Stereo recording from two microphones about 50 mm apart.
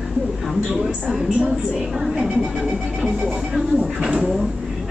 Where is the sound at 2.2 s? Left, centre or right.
Right.